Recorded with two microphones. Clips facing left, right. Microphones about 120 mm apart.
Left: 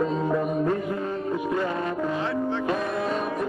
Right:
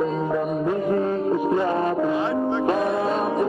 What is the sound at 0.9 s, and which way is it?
Music, 40° right (ahead or behind).